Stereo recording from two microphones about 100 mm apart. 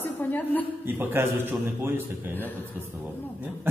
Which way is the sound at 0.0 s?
20° left (ahead or behind).